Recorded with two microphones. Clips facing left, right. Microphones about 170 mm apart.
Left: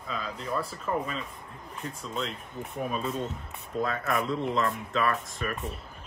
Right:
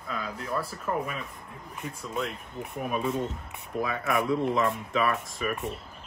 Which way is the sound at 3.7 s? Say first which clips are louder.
Right 1 dB; 5° right (ahead or behind).